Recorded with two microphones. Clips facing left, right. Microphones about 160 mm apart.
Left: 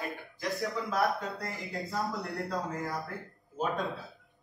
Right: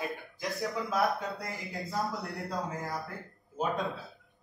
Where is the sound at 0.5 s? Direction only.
Centre (ahead or behind).